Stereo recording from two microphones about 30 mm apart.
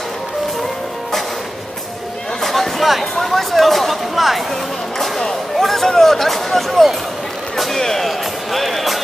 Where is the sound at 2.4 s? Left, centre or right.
Centre.